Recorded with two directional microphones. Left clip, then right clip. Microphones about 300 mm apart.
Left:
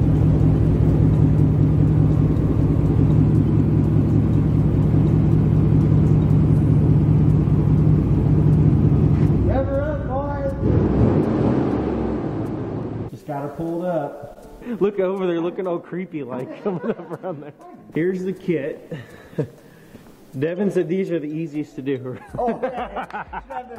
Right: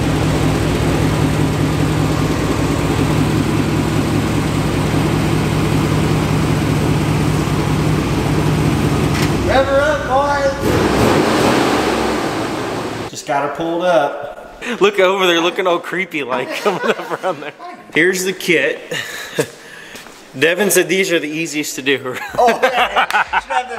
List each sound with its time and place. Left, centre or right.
0.0 s vehicle: centre
10.0 s a sound: centre
10.6 s waves: centre
12.8 s a sound: centre
13.6 s speech: right
13.8 s a man's voice: centre
20.3 s a man's voice: centre